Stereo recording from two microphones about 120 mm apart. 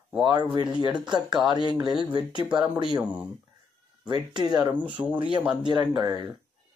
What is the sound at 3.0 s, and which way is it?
Speech, 10° right (ahead or behind).